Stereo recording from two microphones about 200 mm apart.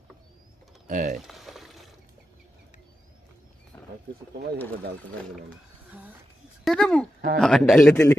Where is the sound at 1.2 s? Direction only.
Centre (ahead or behind).